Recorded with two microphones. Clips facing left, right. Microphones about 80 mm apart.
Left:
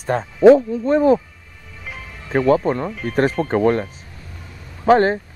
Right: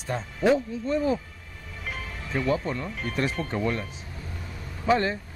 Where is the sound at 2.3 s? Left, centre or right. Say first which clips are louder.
Left 10 dB; left.